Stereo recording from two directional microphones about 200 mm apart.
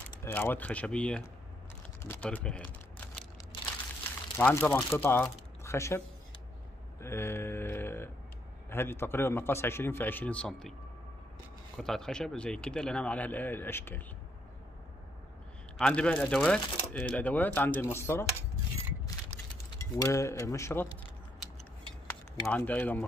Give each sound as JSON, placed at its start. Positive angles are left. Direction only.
{"t": 0.2, "sound": "a man's voice", "side_deg": 10}
{"t": 2.0, "sound": "a sound", "side_deg": 10}
{"t": 4.4, "sound": "speech", "side_deg": 10}
{"t": 7.0, "sound": "a sound", "side_deg": 10}
{"t": 8.6, "sound": "a man's voice", "side_deg": 10}
{"t": 11.7, "sound": "speech", "side_deg": 5}
{"t": 15.8, "sound": "a man's voice", "side_deg": 5}
{"t": 19.3, "sound": "a sound", "side_deg": 15}
{"t": 19.8, "sound": "a man's voice", "side_deg": 15}
{"t": 22.5, "sound": "a man's voice", "side_deg": 10}